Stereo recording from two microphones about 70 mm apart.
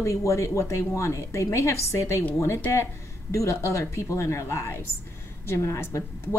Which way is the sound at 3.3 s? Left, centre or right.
Left.